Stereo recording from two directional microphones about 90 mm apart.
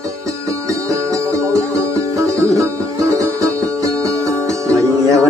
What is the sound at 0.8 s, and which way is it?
Music, 35° right (ahead or behind).